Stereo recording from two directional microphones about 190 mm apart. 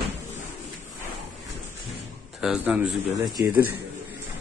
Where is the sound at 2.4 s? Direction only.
5° right (ahead or behind).